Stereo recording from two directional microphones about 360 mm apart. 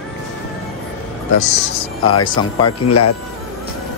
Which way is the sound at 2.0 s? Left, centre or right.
Centre.